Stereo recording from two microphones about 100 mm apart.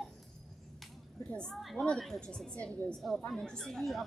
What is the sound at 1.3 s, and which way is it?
A woman's voice, 5° left (ahead or behind).